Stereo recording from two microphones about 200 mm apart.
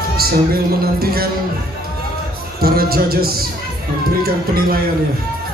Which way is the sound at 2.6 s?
50° right (ahead or behind).